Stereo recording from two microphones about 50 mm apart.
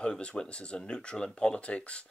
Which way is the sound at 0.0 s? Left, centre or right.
Left.